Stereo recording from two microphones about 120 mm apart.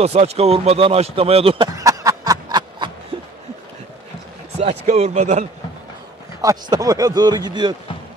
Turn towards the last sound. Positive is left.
turn(degrees=-35)  # may be behind; listen again after turning